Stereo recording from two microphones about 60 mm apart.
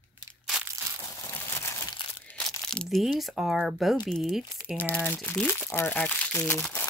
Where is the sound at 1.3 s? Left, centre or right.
Left.